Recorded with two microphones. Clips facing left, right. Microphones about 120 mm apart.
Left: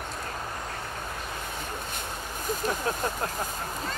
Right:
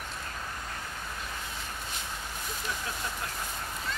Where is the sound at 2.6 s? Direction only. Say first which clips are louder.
Left 8 dB; 45° left (ahead or behind).